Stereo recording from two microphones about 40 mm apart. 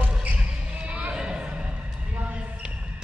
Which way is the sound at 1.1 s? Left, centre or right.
Right.